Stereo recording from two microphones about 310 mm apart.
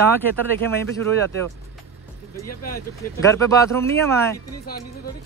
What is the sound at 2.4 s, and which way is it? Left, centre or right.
Speech, left.